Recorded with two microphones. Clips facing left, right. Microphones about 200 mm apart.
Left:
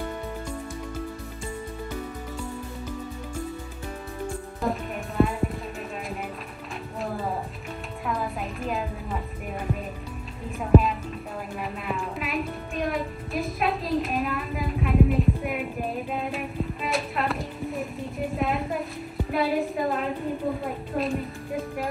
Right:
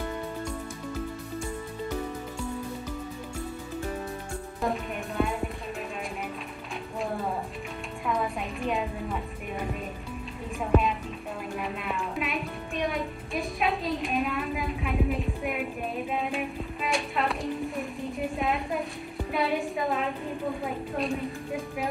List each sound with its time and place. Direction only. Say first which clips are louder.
4.6 s music: even; centre (ahead or behind)
8.1 s music: right 1 dB; centre (ahead or behind)
10.6 s music: left 5 dB; centre (ahead or behind)
18.3 s a sound: left 4 dB; centre (ahead or behind)
19.3 s music: left 3 dB; centre (ahead or behind)